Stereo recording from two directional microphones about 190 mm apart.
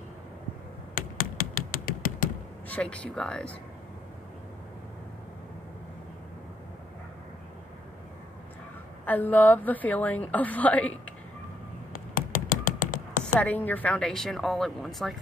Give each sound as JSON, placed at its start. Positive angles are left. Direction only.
{"t": 0.9, "sound": "tap", "side_deg": 50}
{"t": 2.7, "sound": "speech", "side_deg": 5}
{"t": 9.0, "sound": "a woman's voice", "side_deg": 10}
{"t": 11.9, "sound": "a sound", "side_deg": 50}
{"t": 13.4, "sound": "speech", "side_deg": 10}